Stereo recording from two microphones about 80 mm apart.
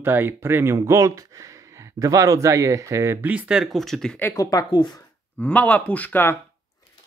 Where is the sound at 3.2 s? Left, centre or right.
Centre.